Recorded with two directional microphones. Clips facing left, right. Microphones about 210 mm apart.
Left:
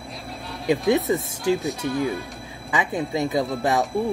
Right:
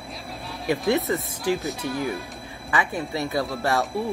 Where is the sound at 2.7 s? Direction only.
20° left (ahead or behind).